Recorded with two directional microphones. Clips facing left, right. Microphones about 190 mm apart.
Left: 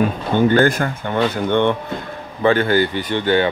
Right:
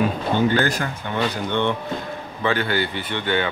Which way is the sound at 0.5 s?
50° left (ahead or behind).